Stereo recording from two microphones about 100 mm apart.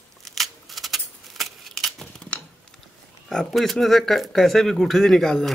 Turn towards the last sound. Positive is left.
turn(degrees=5)  # may be behind; listen again after turning